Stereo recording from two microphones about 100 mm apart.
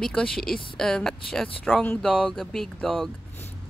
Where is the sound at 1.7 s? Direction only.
20° left (ahead or behind).